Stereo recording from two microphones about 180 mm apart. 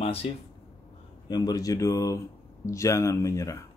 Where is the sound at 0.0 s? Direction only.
35° left (ahead or behind).